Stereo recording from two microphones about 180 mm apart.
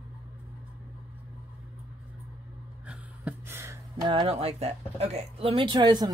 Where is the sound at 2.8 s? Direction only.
10° right (ahead or behind).